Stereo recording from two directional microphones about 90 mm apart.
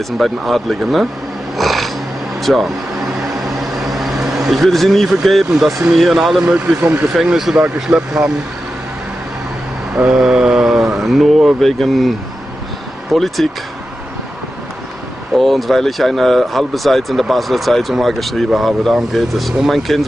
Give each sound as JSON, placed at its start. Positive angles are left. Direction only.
{"t": 0.2, "sound": "speech", "side_deg": 0}
{"t": 1.6, "sound": "a sound", "side_deg": 0}
{"t": 2.4, "sound": "speech", "side_deg": 0}
{"t": 3.8, "sound": "vehicle", "side_deg": 0}
{"t": 5.9, "sound": "speech", "side_deg": 0}
{"t": 6.8, "sound": "speech", "side_deg": -25}
{"t": 7.2, "sound": "speech", "side_deg": -5}
{"t": 9.9, "sound": "speech", "side_deg": -10}
{"t": 13.1, "sound": "speech", "side_deg": 0}
{"t": 15.3, "sound": "speech", "side_deg": 0}